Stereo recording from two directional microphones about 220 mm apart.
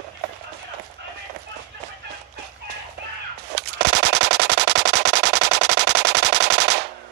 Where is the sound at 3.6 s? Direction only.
50° right (ahead or behind).